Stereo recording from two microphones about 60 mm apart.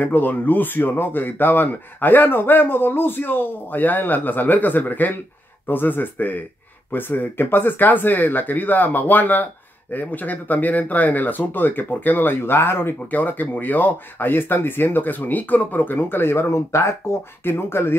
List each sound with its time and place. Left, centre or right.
0.0 s speech: left
13.1 s speech: left